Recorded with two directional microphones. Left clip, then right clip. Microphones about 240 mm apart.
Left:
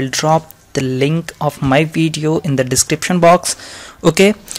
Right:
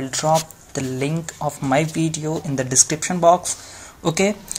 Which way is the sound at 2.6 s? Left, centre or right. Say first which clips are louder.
Right 2 dB; left.